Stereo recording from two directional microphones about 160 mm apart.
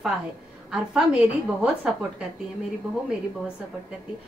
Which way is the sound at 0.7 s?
5° right (ahead or behind).